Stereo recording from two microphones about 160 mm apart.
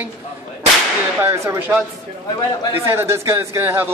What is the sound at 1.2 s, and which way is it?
Speech, 15° right (ahead or behind).